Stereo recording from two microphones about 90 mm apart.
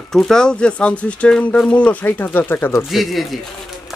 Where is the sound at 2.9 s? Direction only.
Centre (ahead or behind).